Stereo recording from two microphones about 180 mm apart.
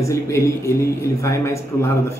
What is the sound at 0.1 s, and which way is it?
Speech, 15° left (ahead or behind).